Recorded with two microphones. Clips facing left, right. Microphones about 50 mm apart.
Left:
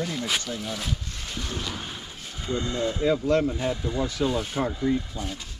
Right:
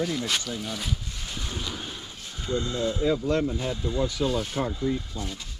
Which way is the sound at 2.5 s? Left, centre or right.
Left.